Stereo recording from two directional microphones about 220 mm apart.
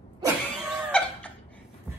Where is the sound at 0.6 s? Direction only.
5° left (ahead or behind).